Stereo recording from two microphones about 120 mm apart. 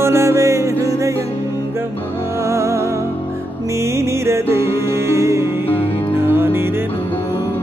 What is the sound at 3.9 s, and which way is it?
Music, 25° right (ahead or behind).